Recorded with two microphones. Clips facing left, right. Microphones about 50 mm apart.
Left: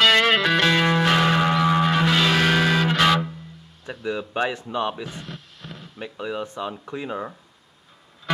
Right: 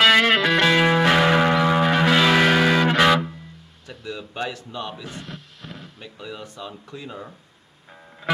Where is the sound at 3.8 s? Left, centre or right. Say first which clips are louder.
Left 6 dB; left.